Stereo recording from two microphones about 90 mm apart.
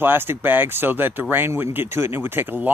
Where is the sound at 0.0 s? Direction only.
25° right (ahead or behind).